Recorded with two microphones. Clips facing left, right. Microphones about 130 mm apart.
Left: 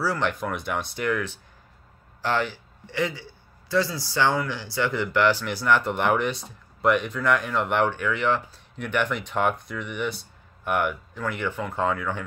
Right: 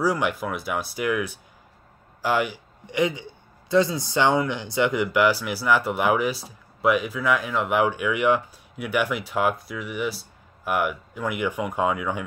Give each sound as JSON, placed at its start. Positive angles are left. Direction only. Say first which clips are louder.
{"t": 0.0, "sound": "a man's voice", "louder": "right 2 dB", "side_deg": -10}